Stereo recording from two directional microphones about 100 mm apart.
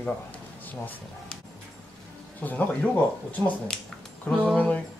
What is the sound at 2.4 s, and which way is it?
A woman's voice, 15° left (ahead or behind).